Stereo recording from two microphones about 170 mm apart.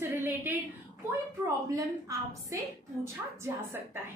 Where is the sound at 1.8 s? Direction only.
20° right (ahead or behind).